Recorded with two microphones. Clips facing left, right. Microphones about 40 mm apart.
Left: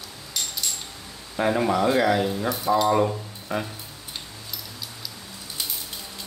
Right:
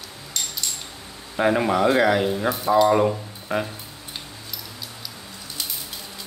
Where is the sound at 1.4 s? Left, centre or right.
Centre.